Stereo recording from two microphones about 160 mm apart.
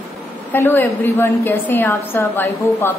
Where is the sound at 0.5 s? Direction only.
15° left (ahead or behind).